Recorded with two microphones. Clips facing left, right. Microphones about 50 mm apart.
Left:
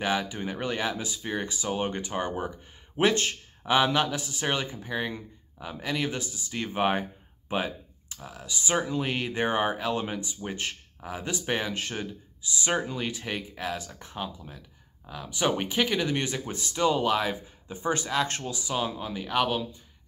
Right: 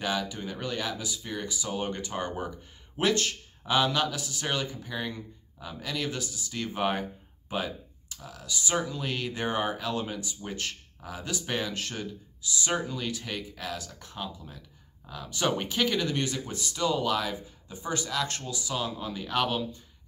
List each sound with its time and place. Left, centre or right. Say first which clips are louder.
0.0 s speech: left 3 dB; left
3.0 s speech: left 2 dB; left; by 19.8 s centre